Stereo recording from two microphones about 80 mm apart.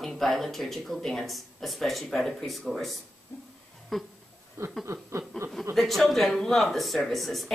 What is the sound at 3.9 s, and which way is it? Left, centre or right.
Speech, centre.